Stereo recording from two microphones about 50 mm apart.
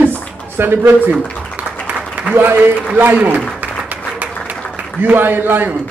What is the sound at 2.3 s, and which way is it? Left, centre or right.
A man's voice, right.